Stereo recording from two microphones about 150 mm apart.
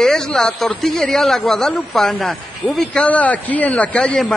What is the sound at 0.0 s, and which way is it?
A man's voice, 5° left (ahead or behind).